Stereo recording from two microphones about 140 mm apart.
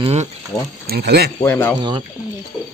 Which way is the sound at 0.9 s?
90° right.